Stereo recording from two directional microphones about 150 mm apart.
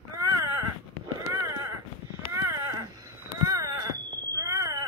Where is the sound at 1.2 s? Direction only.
20° right (ahead or behind).